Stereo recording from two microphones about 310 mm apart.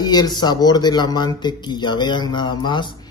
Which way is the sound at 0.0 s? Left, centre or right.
Centre.